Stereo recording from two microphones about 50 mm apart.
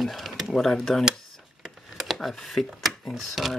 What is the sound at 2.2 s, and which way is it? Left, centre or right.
Speech, centre.